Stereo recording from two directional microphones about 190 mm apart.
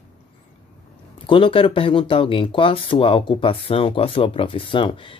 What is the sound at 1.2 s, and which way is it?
Speech, 25° left (ahead or behind).